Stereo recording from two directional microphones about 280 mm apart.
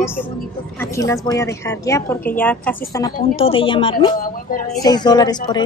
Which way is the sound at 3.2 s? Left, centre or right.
Left.